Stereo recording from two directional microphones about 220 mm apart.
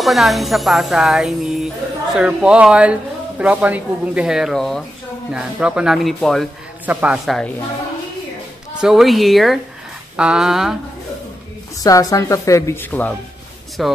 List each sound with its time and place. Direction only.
0.0 s speech: centre (ahead or behind)
8.8 s speech: centre (ahead or behind)
11.8 s speech: 15° left (ahead or behind); by 13.9 s centre (ahead or behind)